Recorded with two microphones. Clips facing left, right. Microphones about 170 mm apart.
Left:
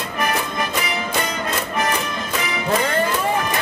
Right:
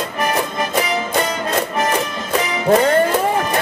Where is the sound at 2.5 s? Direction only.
40° right (ahead or behind).